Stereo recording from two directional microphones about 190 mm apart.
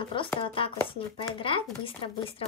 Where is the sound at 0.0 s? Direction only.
25° left (ahead or behind).